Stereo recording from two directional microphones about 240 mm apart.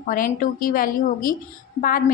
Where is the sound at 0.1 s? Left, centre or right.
Left.